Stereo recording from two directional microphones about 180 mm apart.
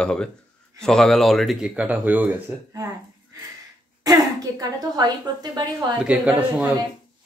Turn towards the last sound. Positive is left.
turn(degrees=-5)  # may be behind; listen again after turning